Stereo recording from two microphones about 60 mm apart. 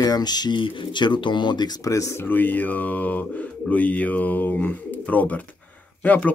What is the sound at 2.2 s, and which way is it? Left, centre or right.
Speech, left.